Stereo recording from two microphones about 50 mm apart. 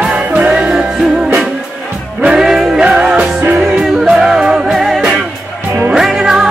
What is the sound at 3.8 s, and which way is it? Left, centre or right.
Music, centre.